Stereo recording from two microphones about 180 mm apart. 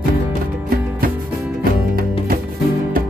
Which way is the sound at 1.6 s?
55° right (ahead or behind).